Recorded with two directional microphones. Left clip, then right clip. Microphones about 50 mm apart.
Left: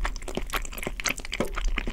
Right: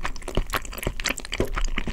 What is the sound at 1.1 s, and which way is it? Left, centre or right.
Crack, right.